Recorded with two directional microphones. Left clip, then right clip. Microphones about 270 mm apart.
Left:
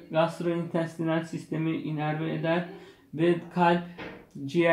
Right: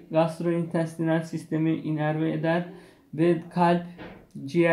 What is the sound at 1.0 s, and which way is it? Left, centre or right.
Speech, right.